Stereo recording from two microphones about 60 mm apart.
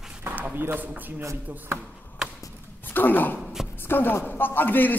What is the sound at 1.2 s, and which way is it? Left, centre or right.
Speech, right.